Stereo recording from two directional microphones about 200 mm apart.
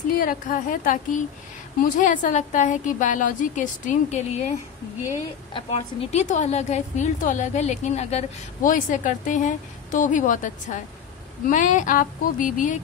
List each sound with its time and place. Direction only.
0.2 s a woman's voice: 45° left (ahead or behind)
5.5 s a woman's voice: 30° left (ahead or behind)